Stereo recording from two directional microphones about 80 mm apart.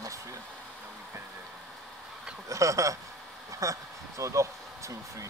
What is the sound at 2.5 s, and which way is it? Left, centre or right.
Speech, right.